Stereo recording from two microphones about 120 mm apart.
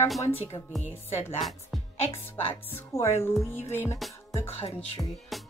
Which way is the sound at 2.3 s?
15° left (ahead or behind).